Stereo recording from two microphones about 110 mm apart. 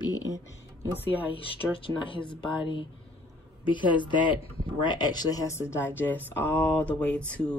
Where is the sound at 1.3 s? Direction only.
55° left (ahead or behind).